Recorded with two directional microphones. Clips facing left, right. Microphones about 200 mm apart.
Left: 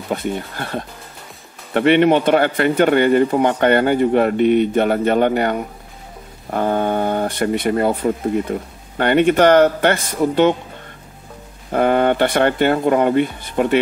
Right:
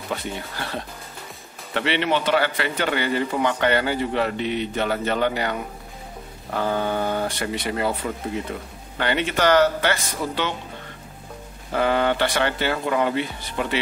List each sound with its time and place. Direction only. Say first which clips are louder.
0.1 s speech: left 7 dB; 50° left (ahead or behind)
11.7 s speech: left 6 dB; 50° left (ahead or behind)